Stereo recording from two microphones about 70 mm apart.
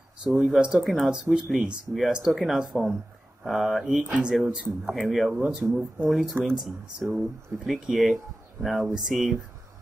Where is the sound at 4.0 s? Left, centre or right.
Centre.